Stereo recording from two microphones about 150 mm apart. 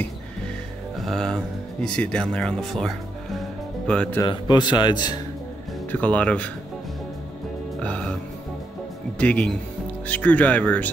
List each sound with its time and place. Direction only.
1.0 s speech: 5° left (ahead or behind)
4.2 s speech: 30° left (ahead or behind)
5.9 s speech: 10° left (ahead or behind)
7.8 s music: 5° left (ahead or behind)
9.2 s speech: 10° left (ahead or behind)